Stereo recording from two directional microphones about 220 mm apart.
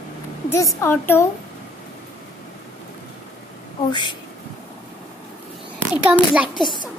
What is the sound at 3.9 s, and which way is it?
Speech, 20° left (ahead or behind).